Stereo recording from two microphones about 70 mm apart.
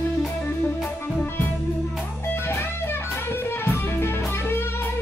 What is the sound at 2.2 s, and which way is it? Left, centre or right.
Music, left.